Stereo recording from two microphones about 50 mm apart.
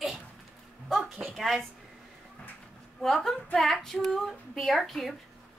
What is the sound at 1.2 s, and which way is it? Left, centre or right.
Speech, centre.